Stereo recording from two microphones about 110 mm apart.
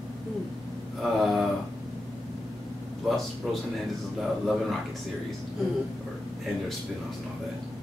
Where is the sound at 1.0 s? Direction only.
Centre (ahead or behind).